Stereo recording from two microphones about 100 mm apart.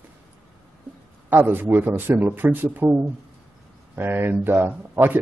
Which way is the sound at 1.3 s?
20° right (ahead or behind).